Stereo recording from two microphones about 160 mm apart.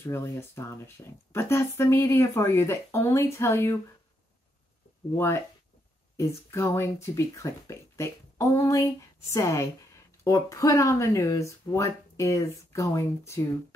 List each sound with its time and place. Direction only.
0.0 s speech: 15° left (ahead or behind)
5.1 s speech: 15° left (ahead or behind)